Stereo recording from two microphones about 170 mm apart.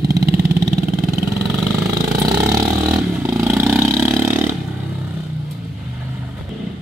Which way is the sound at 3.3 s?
15° right (ahead or behind).